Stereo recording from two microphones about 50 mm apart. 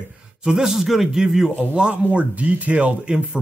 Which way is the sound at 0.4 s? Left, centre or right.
Centre.